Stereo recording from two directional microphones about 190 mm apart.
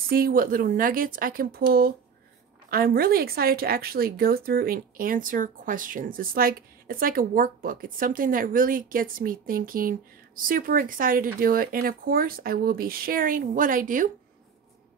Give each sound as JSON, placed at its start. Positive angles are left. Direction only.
{"t": 0.1, "sound": "a woman's voice", "side_deg": -50}